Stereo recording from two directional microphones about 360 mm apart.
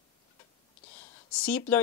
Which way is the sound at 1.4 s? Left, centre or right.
Centre.